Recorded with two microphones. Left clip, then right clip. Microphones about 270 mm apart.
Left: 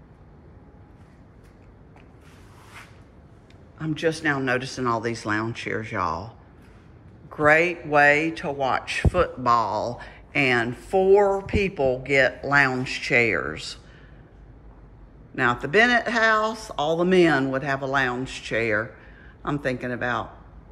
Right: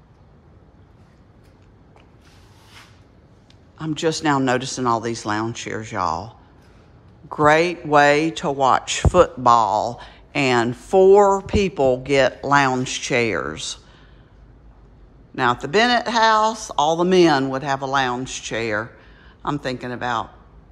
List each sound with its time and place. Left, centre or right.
3.7 s speech: centre
15.3 s speech: centre